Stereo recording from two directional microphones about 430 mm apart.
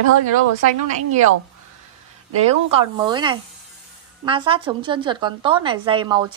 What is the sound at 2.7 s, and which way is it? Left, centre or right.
A woman's voice, centre.